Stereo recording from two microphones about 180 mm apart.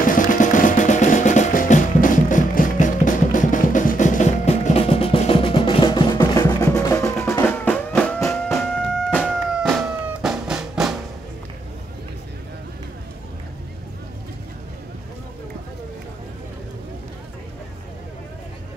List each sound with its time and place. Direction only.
0.0 s music: 50° left (ahead or behind); by 11.0 s 5° right (ahead or behind)